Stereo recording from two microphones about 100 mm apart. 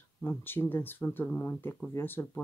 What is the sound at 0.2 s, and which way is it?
Speech, 20° left (ahead or behind).